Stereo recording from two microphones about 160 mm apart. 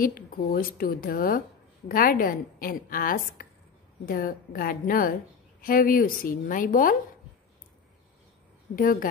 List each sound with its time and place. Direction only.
0.0 s a woman's voice: 65° left (ahead or behind)
8.7 s a woman's voice: 60° left (ahead or behind)